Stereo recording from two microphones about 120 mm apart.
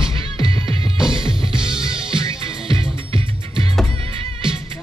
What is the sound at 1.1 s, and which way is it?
Music, 45° right (ahead or behind).